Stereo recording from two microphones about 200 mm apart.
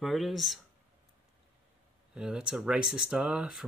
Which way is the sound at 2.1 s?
5° right (ahead or behind).